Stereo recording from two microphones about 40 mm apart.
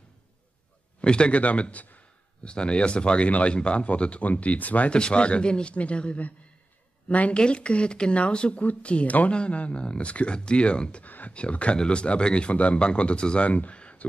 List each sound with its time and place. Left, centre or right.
1.0 s speech: left
1.4 s speech: left
2.4 s speech: left
4.9 s speech: left
7.3 s speech: left
11.1 s speech: left
11.3 s speech: left